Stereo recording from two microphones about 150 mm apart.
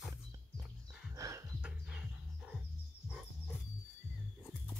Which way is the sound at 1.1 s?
20° right (ahead or behind).